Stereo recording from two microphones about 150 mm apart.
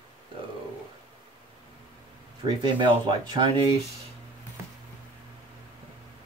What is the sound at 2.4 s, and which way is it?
Speech, 30° right (ahead or behind).